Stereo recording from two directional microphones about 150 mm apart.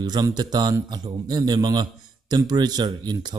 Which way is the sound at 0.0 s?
25° right (ahead or behind).